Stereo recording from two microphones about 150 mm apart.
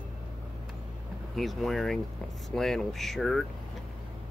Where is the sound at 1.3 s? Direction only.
Centre (ahead or behind).